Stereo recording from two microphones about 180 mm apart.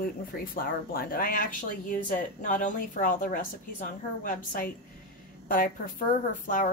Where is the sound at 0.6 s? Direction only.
55° left (ahead or behind).